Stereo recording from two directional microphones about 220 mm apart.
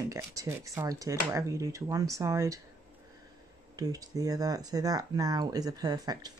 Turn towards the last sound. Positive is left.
turn(degrees=-15)  # may be behind; listen again after turning